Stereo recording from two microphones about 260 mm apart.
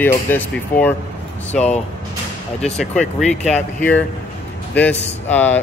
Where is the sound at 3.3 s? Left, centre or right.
Left.